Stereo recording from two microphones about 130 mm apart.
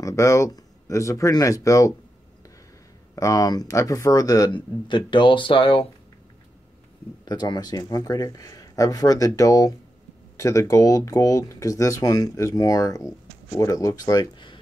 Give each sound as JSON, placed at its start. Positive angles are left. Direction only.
{"t": 0.0, "sound": "speech", "side_deg": 25}
{"t": 3.2, "sound": "speech", "side_deg": 25}
{"t": 7.2, "sound": "speech", "side_deg": 35}